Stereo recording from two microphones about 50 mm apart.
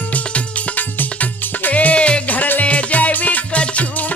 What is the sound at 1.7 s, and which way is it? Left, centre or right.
Music, left.